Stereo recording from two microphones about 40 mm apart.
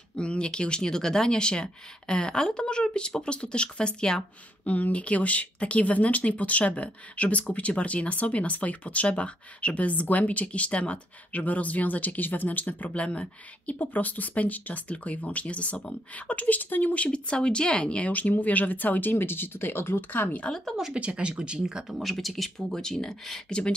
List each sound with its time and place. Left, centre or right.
0.1 s speech: left
4.6 s speech: left
13.7 s speech: left
16.9 s speech: left
18.3 s speech: left
20.1 s speech: left
20.9 s speech: right
21.8 s speech: centre
22.7 s speech: centre